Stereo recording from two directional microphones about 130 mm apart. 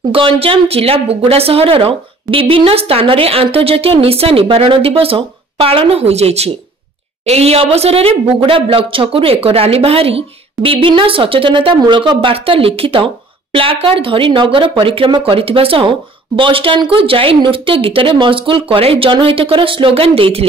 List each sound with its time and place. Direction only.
0.1 s a woman's voice: 45° right (ahead or behind)